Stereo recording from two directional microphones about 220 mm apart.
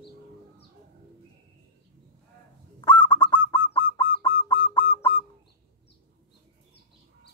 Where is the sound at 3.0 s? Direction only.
20° left (ahead or behind).